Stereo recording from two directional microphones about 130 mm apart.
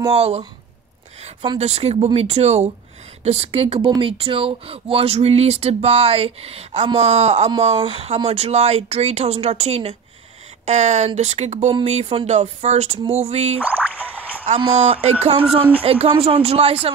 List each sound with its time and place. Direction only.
0.1 s speech: 50° right (ahead or behind)
1.6 s speech: 55° right (ahead or behind)
10.6 s speech: 60° right (ahead or behind)
13.6 s speech: 10° right (ahead or behind)
14.4 s speech: 55° right (ahead or behind)